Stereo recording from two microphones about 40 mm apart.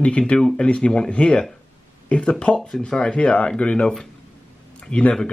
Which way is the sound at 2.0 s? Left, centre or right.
Left.